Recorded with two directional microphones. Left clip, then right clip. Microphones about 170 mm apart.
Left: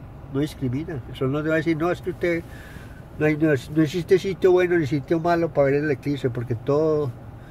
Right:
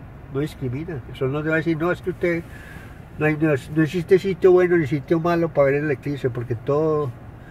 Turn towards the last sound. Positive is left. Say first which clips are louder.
# even
turn(degrees=0)  # may be behind; listen again after turning